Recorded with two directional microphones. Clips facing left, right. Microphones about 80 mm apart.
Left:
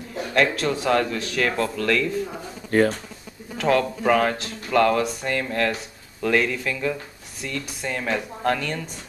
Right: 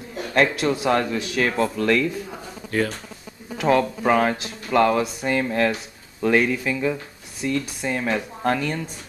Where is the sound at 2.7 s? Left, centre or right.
Left.